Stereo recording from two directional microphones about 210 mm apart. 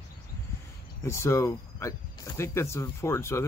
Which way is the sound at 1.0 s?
10° left (ahead or behind).